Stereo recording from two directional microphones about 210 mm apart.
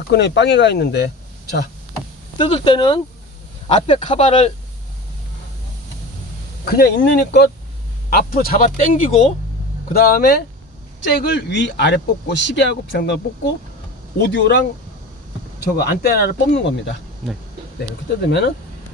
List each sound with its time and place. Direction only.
0.1 s speech: 55° left (ahead or behind)
2.3 s speech: 25° left (ahead or behind)
6.6 s speech: 45° left (ahead or behind)